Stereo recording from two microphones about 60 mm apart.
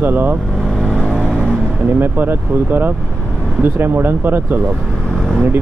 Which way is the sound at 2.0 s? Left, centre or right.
Right.